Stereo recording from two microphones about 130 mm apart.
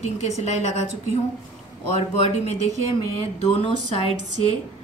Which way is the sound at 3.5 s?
50° left (ahead or behind).